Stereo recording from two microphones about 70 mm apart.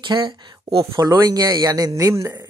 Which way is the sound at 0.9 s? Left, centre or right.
Right.